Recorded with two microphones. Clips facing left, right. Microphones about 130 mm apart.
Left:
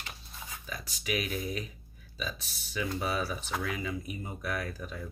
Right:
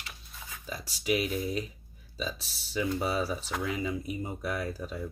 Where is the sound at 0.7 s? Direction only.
30° right (ahead or behind).